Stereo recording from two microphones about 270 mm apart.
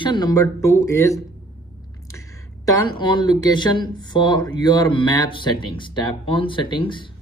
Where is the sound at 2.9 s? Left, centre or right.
Centre.